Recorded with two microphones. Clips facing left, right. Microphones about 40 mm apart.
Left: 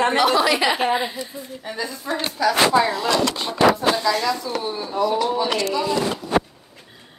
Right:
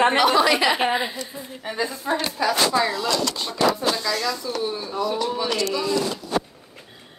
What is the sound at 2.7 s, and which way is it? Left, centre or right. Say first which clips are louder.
Speech: left 3 dB; left.